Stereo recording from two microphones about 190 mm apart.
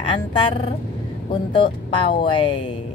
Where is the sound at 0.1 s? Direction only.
25° left (ahead or behind).